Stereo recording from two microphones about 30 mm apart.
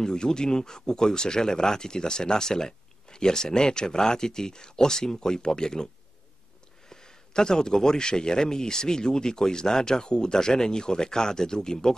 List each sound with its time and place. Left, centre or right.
0.0 s speech: left
6.9 s speech: left